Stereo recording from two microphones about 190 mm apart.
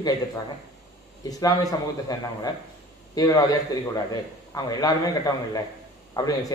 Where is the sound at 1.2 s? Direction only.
20° left (ahead or behind).